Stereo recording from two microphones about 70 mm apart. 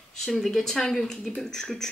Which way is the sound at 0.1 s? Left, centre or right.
Centre.